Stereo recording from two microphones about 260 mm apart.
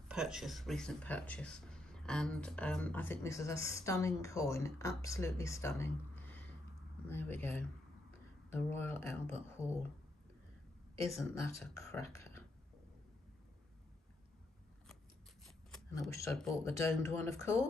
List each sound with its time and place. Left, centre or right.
0.1 s speech: centre
11.1 s speech: centre
15.4 s a sound: centre
16.1 s speech: centre